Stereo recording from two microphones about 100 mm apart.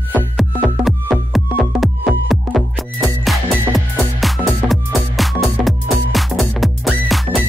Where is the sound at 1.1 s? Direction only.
Centre (ahead or behind).